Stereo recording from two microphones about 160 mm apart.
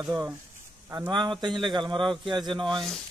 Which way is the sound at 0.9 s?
25° right (ahead or behind).